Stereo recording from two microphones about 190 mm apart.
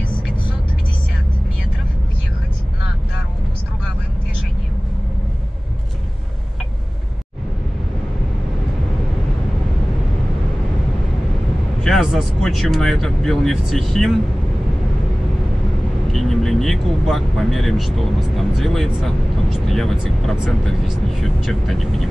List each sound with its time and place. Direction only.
11.8 s speech: centre (ahead or behind)
16.1 s speech: centre (ahead or behind)